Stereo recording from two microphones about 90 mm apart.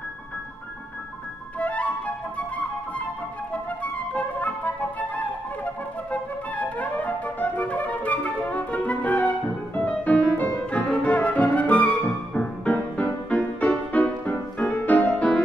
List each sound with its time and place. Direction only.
1.6 s flute: 15° left (ahead or behind)
3.8 s flute: 15° left (ahead or behind)
9.8 s music: 15° left (ahead or behind)